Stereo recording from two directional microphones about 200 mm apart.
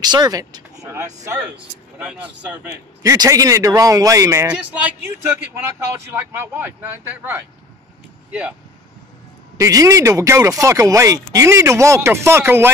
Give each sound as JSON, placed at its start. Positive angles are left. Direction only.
{"t": 0.0, "sound": "speech", "side_deg": -20}
{"t": 2.0, "sound": "a man's voice", "side_deg": -5}
{"t": 9.6, "sound": "a man's voice", "side_deg": -15}